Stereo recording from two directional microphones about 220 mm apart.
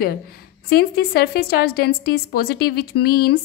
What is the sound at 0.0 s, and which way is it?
A woman's voice, 45° left (ahead or behind).